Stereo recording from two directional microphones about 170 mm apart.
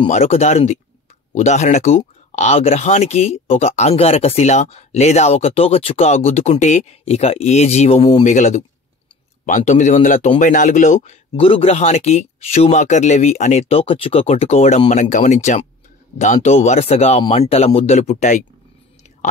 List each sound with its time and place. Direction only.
0.1 s speech: 40° left (ahead or behind)
11.3 s speech: 30° left (ahead or behind)